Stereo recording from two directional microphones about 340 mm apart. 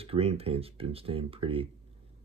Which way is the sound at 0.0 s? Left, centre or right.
Centre.